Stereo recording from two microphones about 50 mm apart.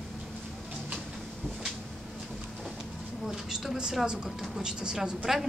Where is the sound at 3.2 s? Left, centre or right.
Centre.